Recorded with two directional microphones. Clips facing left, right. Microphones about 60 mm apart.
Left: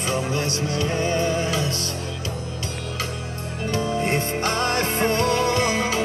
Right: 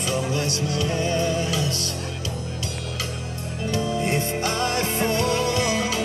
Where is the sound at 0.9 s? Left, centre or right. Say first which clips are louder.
Left 1 dB; left.